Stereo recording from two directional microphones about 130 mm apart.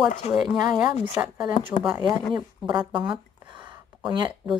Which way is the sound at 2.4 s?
30° right (ahead or behind).